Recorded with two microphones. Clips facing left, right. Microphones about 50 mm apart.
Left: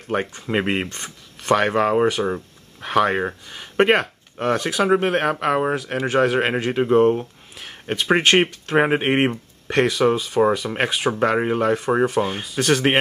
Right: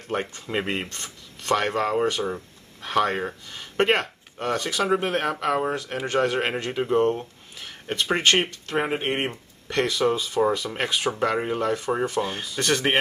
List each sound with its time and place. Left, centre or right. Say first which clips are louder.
0.1 s speech: left 5 dB; left
0.8 s speech: left 4 dB; centre
1.5 s speech: left 5 dB; centre
3.2 s speech: left 5 dB; centre
4.7 s speech: left 5 dB; left
5.0 s speech: left 5 dB; centre
8.8 s speech: left 7 dB; left
9.8 s speech: left 4 dB; centre